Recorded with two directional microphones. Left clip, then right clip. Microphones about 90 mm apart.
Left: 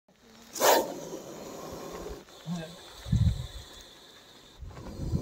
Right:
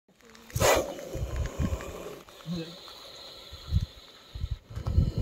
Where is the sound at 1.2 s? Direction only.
50° left (ahead or behind).